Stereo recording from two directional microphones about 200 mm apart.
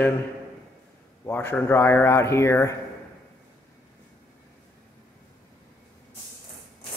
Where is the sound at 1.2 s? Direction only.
10° left (ahead or behind).